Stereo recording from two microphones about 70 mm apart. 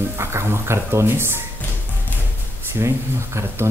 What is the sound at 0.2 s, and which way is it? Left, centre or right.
Speech, right.